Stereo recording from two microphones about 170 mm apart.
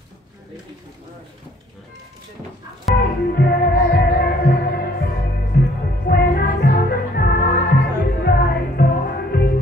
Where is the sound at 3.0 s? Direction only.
65° left (ahead or behind).